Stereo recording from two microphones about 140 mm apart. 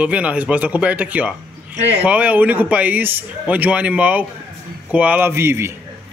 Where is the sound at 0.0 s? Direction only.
10° right (ahead or behind).